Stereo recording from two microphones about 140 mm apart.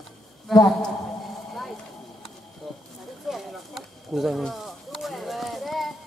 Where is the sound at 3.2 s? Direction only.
Centre (ahead or behind).